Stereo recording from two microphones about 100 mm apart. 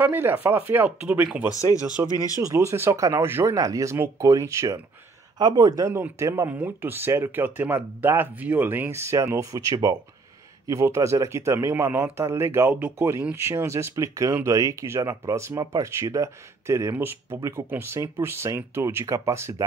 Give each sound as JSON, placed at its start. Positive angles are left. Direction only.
{"t": 0.0, "sound": "speech", "side_deg": -20}
{"t": 2.4, "sound": "speech", "side_deg": -30}
{"t": 3.5, "sound": "speech", "side_deg": -35}
{"t": 6.1, "sound": "speech", "side_deg": -25}
{"t": 17.4, "sound": "speech", "side_deg": -30}